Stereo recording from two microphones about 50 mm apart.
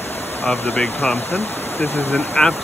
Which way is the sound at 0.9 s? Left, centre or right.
Left.